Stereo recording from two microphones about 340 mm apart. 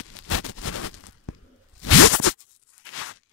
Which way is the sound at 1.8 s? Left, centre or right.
Left.